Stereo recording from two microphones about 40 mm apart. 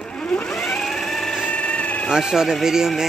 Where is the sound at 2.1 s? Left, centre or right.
Centre.